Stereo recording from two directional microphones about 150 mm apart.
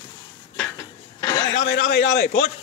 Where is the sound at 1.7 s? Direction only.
55° left (ahead or behind).